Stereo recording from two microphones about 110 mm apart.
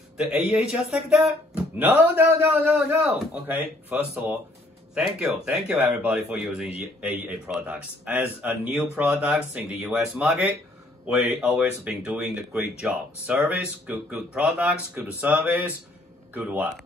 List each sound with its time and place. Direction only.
0.2 s speech: 5° right (ahead or behind)
2.6 s speech: 15° right (ahead or behind)